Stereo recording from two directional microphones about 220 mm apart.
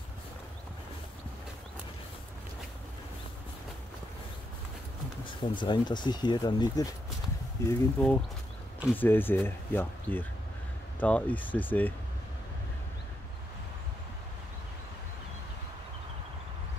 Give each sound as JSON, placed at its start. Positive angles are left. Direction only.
{"t": 5.2, "sound": "speech", "side_deg": 20}